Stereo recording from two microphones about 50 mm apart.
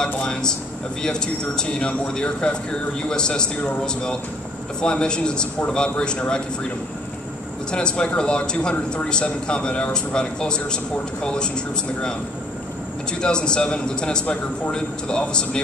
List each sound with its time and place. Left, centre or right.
0.0 s speech: centre
7.7 s speech: centre
13.2 s speech: centre